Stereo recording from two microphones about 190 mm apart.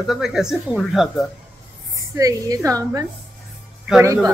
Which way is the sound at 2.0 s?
15° right (ahead or behind).